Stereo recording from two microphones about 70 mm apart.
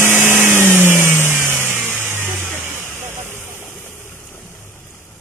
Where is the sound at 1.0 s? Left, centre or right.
Left.